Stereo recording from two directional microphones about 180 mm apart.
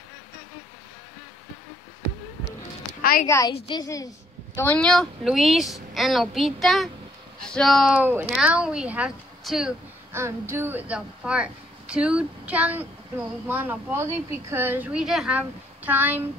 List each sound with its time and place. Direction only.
3.0 s a sound: 55° left (ahead or behind)
3.3 s a woman's voice: 15° left (ahead or behind); by 9.8 s centre (ahead or behind)
10.1 s a woman's voice: 15° right (ahead or behind)